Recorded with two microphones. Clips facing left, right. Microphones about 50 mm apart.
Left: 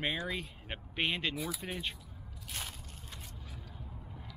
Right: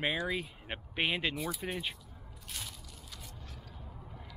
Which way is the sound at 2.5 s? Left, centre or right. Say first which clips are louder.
Left 2 dB; left.